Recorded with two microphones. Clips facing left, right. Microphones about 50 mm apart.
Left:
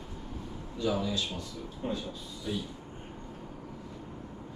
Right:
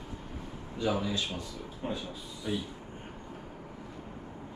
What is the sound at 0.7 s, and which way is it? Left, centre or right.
Speech, right.